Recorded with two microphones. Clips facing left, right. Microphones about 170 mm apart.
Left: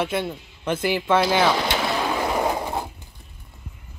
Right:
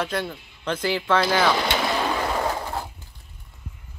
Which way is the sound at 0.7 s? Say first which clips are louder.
Left 2 dB; 10° left (ahead or behind).